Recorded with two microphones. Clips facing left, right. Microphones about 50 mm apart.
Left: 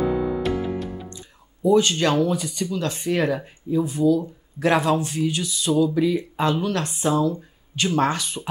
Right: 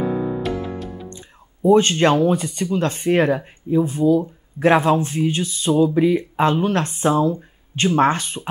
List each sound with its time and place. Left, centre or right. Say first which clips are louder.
0.4 s music: left 1 dB; centre
1.1 s a sound: right 2 dB; right
2.2 s speech: right 5 dB; right